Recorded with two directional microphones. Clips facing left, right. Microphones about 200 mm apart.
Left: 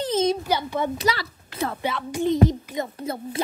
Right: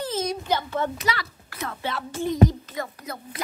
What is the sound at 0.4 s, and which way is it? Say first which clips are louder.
Speech: left 1 dB; 10° left (ahead or behind).